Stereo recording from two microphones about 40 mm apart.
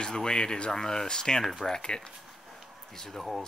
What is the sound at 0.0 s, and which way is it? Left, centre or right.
Speech, centre.